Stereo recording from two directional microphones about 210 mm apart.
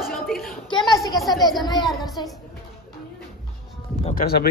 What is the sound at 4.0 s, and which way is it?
Speech, 40° left (ahead or behind).